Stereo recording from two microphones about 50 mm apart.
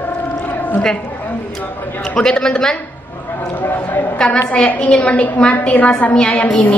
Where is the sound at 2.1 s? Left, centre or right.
Centre.